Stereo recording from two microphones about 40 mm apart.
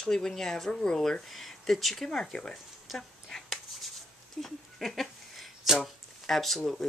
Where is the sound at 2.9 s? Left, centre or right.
Centre.